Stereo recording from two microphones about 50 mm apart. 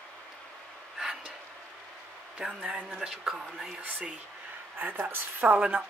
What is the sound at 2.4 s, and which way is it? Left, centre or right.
Speech, centre.